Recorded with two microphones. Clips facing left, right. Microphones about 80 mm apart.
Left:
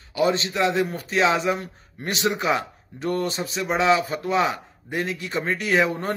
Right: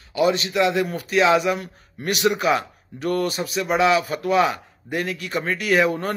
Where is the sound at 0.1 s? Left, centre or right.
Left.